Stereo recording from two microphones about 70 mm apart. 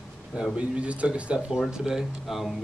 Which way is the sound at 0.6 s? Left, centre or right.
Centre.